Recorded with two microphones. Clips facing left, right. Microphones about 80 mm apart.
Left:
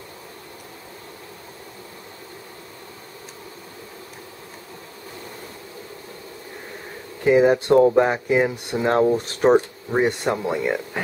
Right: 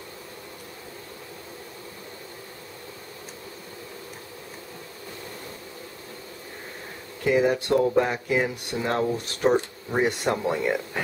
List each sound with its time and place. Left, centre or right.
7.2 s speech: left
8.9 s speech: left
9.8 s speech: centre